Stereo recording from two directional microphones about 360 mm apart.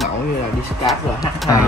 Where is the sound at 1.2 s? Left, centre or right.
Centre.